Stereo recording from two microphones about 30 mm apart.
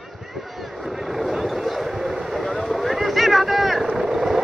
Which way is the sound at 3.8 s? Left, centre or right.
Centre.